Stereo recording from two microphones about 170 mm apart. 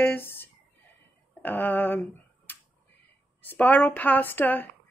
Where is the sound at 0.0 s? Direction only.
15° left (ahead or behind).